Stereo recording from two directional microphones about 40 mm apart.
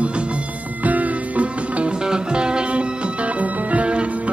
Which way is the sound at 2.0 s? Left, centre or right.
Right.